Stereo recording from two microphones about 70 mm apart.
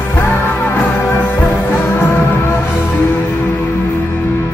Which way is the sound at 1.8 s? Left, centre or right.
Left.